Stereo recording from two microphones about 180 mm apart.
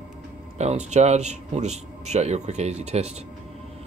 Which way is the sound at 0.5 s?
40° right (ahead or behind).